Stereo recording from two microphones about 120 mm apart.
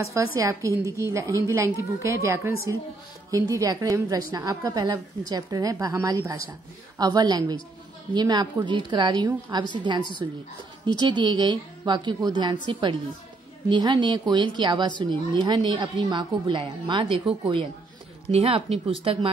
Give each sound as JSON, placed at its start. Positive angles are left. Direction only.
{"t": 0.0, "sound": "a woman's voice", "side_deg": -25}
{"t": 13.7, "sound": "a woman's voice", "side_deg": -40}
{"t": 18.3, "sound": "speech", "side_deg": -55}